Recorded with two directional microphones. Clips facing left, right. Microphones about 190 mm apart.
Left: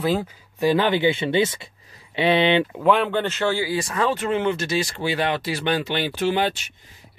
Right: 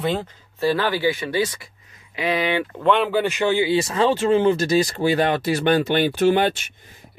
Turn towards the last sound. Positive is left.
turn(degrees=-50)  # may be behind; listen again after turning